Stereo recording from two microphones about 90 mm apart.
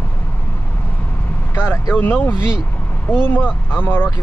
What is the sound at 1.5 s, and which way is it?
Vehicle, 20° left (ahead or behind).